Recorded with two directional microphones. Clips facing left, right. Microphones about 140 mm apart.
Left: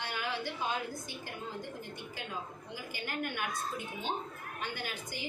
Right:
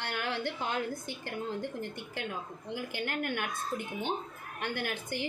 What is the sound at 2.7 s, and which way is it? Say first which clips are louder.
A woman's voice: right 5 dB; 60° right (ahead or behind).